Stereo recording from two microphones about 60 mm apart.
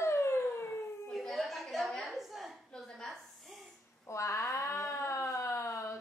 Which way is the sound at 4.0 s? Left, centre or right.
Left.